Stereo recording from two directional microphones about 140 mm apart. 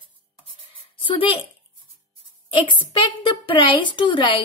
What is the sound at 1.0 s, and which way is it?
Speech, 40° left (ahead or behind).